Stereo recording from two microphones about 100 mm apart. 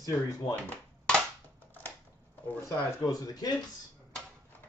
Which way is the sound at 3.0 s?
40° left (ahead or behind).